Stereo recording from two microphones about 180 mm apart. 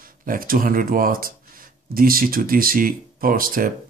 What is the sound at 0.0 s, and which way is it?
Speech, 50° right (ahead or behind).